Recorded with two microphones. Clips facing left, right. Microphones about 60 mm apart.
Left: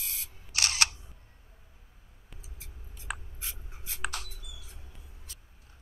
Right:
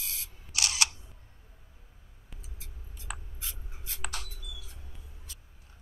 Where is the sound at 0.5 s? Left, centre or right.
Left.